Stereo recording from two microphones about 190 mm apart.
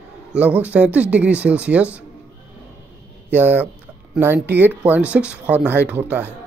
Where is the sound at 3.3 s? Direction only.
10° right (ahead or behind).